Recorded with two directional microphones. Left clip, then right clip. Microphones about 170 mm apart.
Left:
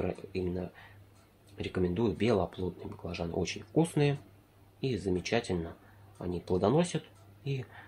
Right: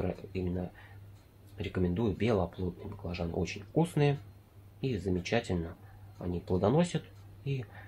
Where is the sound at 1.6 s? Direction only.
30° left (ahead or behind).